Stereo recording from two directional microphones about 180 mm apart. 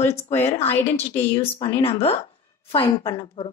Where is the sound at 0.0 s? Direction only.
35° left (ahead or behind).